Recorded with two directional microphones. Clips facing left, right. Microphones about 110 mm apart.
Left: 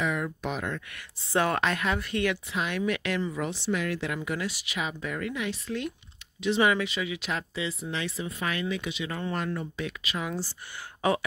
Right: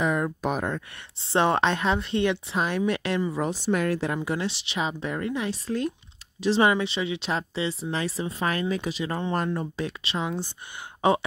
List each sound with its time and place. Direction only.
0.0 s speech: 40° right (ahead or behind); by 11.2 s 25° right (ahead or behind)